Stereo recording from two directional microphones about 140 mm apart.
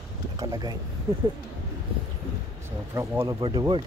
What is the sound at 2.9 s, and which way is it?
Speech, 20° right (ahead or behind).